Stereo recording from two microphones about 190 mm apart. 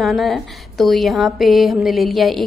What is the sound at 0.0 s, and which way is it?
A woman's voice, centre (ahead or behind).